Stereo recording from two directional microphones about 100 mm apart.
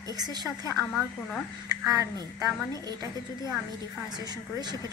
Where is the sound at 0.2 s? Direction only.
45° right (ahead or behind).